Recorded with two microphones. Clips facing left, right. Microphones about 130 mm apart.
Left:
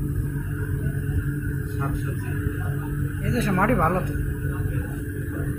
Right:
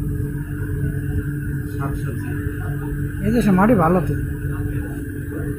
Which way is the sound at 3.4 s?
20° right (ahead or behind).